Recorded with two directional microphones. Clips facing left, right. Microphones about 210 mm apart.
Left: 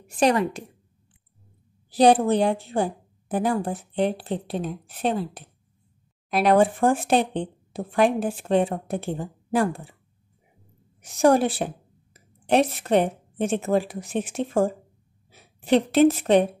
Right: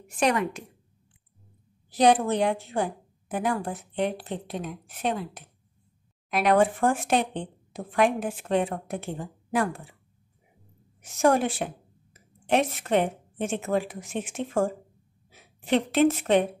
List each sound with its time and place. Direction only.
0.2 s a woman's voice: 35° left (ahead or behind)
1.9 s a woman's voice: 30° left (ahead or behind)
11.0 s a woman's voice: 35° left (ahead or behind)